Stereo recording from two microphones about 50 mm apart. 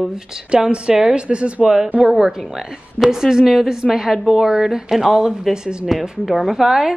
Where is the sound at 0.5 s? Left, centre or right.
Centre.